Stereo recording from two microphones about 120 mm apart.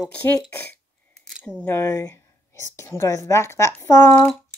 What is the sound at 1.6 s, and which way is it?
A woman's voice, 25° left (ahead or behind).